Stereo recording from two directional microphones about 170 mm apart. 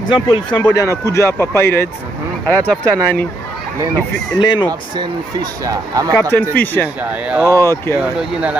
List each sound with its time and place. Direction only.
0.1 s speech: 30° left (ahead or behind)
0.7 s speech: 15° left (ahead or behind)
4.4 s speech: 25° left (ahead or behind)
4.6 s speech: 20° right (ahead or behind)
6.5 s speech: 10° left (ahead or behind)
7.0 s speech: 10° right (ahead or behind)
7.6 s speech: 15° left (ahead or behind)
8.0 s speech: 5° right (ahead or behind)